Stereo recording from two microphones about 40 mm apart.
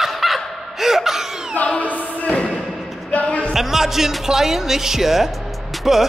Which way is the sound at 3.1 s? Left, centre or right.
Left.